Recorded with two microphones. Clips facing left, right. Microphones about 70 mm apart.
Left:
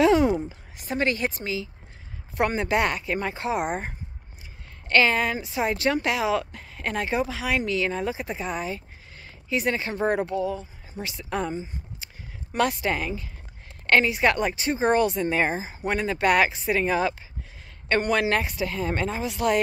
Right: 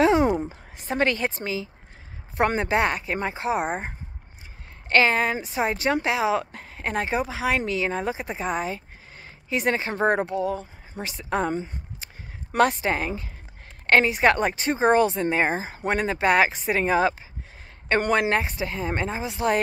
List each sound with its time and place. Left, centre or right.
0.0 s a sound: right
0.4 s speech: right
6.4 s a sound: right
6.8 s speech: right
10.4 s speech: right
11.0 s speech: right
11.4 s speech: right
12.5 s speech: right
15.5 s speech: right
18.3 s speech: right